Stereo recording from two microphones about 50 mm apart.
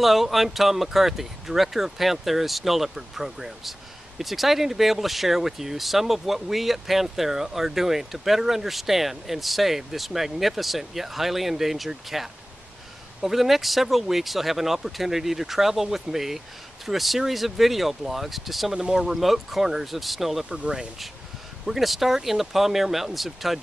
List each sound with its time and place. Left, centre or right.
0.0 s speech: centre
20.4 s speech: centre
21.6 s speech: centre